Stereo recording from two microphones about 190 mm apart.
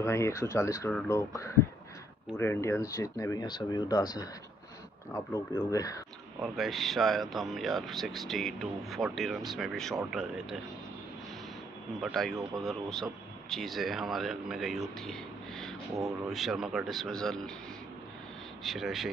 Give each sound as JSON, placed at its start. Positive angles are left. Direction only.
{"t": 0.0, "sound": "speech", "side_deg": 15}
{"t": 6.4, "sound": "speech", "side_deg": 0}
{"t": 12.0, "sound": "speech", "side_deg": 0}
{"t": 15.0, "sound": "a sound", "side_deg": 0}
{"t": 16.3, "sound": "speech", "side_deg": 0}
{"t": 18.6, "sound": "speech", "side_deg": 0}